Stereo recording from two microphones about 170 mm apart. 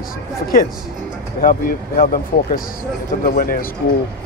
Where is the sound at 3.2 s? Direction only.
60° left (ahead or behind).